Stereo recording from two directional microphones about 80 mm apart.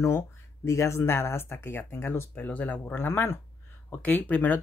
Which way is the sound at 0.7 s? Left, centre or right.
Left.